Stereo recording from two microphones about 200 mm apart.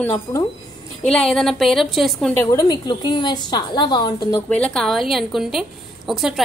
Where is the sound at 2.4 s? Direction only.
20° left (ahead or behind).